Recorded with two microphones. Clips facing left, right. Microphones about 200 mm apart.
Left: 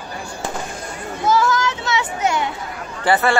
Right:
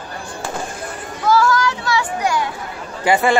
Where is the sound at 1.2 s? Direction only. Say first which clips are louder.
Right 2 dB; 20° left (ahead or behind).